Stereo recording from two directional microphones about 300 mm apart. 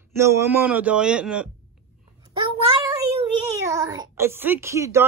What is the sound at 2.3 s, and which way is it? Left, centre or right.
Child singing, centre.